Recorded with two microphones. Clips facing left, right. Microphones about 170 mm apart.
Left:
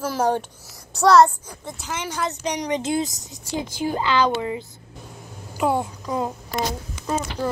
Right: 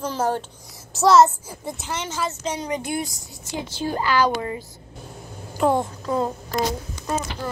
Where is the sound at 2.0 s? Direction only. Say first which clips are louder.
Left 3 dB; 15° left (ahead or behind).